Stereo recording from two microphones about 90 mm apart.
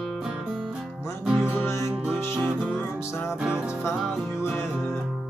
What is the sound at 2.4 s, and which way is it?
Music, 5° right (ahead or behind).